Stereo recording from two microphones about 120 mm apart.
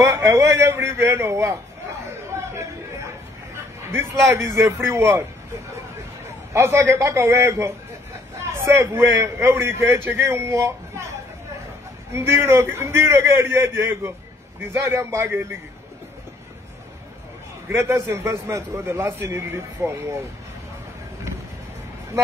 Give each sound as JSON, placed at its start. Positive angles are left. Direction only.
{"t": 0.1, "sound": "a man's voice", "side_deg": -25}
{"t": 2.3, "sound": "chatter", "side_deg": -20}
{"t": 3.9, "sound": "a man's voice", "side_deg": -25}
{"t": 6.5, "sound": "a man's voice", "side_deg": -25}
{"t": 12.1, "sound": "a man's voice", "side_deg": -20}
{"t": 17.6, "sound": "a man's voice", "side_deg": -20}